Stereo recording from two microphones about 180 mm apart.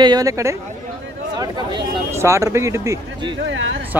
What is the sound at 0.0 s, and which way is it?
A woman's voice, 20° right (ahead or behind).